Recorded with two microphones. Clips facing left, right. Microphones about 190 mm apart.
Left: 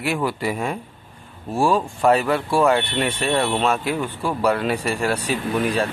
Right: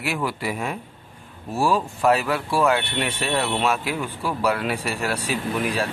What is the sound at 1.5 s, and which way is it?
Speech, 25° left (ahead or behind).